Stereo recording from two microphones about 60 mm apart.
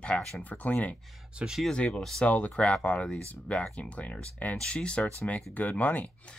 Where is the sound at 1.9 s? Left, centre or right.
Centre.